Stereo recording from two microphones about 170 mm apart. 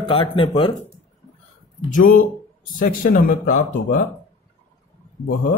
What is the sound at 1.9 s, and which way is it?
Speech, 55° left (ahead or behind).